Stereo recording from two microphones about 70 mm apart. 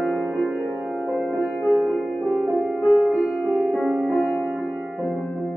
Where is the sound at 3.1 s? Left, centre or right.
Centre.